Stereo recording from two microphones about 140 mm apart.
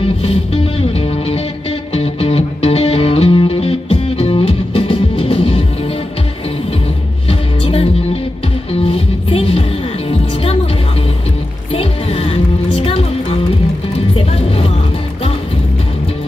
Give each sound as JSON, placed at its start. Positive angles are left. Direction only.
{"t": 0.0, "sound": "music", "side_deg": 45}
{"t": 7.2, "sound": "music", "side_deg": 45}
{"t": 11.7, "sound": "music", "side_deg": 40}